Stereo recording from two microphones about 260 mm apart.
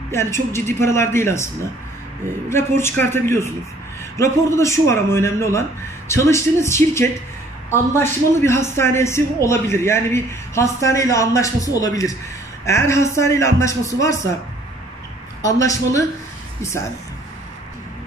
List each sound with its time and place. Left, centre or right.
0.1 s a man's voice: centre
15.4 s a man's voice: centre